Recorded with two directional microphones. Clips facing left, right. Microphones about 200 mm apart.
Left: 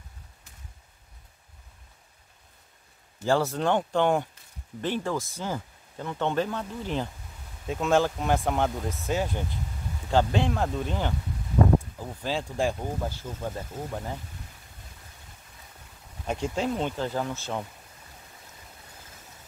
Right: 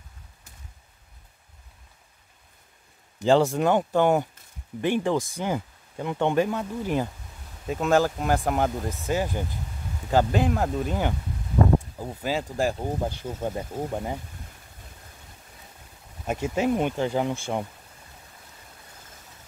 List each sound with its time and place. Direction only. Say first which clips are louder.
3.2 s speech: right 5 dB; 20° right (ahead or behind)
12.2 s speech: right 2 dB; 10° right (ahead or behind)
12.7 s speech: right 3 dB; 20° right (ahead or behind)
16.3 s speech: right 4 dB; 5° right (ahead or behind)